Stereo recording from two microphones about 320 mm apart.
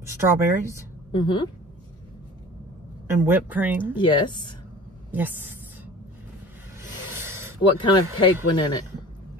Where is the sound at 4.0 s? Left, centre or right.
Centre.